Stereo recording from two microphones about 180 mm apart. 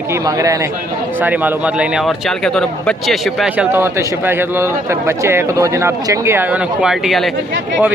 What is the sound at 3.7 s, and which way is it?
A man's voice, 15° right (ahead or behind).